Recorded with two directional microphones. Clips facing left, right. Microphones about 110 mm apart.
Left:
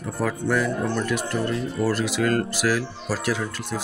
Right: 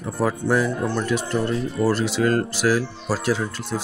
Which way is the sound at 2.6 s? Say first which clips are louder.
Right 3 dB; 30° right (ahead or behind).